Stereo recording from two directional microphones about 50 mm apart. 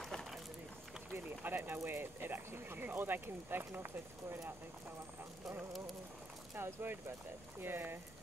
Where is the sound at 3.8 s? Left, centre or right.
Right.